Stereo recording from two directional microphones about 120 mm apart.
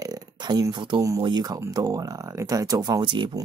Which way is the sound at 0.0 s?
35° right (ahead or behind).